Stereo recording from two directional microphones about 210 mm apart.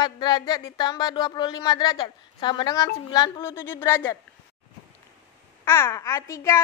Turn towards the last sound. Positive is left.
turn(degrees=15)  # may be behind; listen again after turning